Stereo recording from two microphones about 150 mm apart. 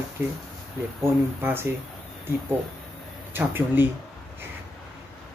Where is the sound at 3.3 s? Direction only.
15° right (ahead or behind).